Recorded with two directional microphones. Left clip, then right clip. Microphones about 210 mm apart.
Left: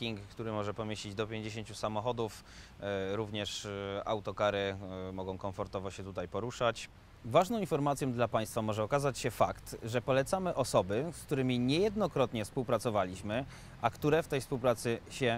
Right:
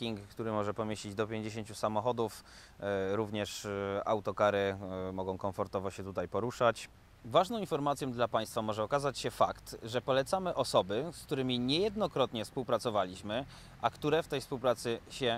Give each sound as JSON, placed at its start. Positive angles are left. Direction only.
{"t": 0.0, "sound": "speech", "side_deg": 0}
{"t": 7.2, "sound": "speech", "side_deg": 40}